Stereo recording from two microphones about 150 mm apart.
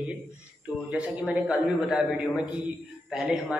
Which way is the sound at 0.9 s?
10° right (ahead or behind).